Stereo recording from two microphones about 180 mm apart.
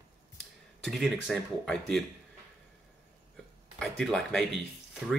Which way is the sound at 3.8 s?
5° left (ahead or behind).